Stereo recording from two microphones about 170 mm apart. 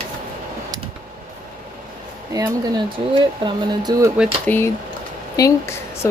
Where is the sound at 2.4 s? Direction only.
20° right (ahead or behind).